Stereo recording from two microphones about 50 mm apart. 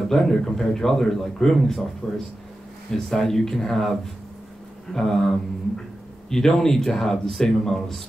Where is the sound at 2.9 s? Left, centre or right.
Centre.